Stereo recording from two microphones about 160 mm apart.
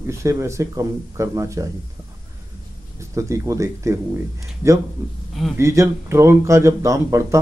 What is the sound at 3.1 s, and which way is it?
Speech, 20° right (ahead or behind).